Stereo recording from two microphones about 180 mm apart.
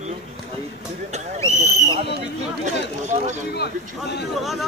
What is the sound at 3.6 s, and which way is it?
Speech, 65° left (ahead or behind).